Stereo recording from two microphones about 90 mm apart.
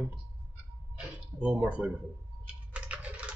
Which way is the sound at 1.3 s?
10° right (ahead or behind).